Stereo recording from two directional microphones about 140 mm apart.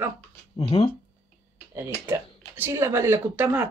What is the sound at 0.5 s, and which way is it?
Speech, 50° left (ahead or behind).